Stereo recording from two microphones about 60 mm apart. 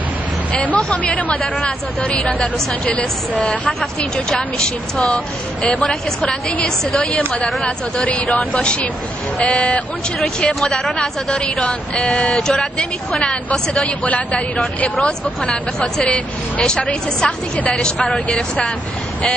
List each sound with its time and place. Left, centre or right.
0.5 s speech: left
0.7 s a woman's voice: centre
1.1 s a woman's voice: left
3.8 s a woman's voice: centre
10.2 s a woman's voice: centre
15.8 s a woman's voice: centre